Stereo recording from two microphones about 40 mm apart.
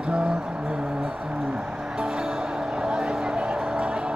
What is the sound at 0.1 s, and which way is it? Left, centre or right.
Music, right.